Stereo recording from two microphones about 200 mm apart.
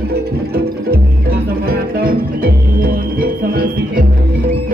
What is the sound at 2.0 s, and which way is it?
Music, 50° right (ahead or behind).